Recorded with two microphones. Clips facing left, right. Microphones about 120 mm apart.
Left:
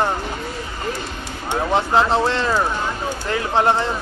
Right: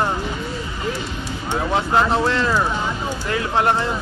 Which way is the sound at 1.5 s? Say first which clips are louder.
Left 1 dB; 20° left (ahead or behind).